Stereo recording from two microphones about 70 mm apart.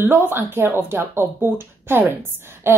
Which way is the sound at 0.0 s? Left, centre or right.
Right.